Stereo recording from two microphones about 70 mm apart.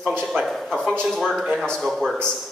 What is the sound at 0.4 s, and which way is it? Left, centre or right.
A man's voice, centre.